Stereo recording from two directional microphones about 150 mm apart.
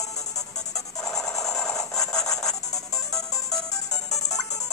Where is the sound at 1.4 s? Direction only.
5° left (ahead or behind).